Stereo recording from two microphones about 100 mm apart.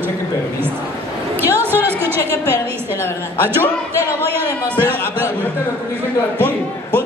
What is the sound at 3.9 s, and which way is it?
Speech, 20° right (ahead or behind).